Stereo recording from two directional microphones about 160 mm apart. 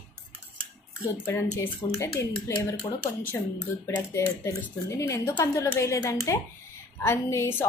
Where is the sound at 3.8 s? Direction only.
15° left (ahead or behind).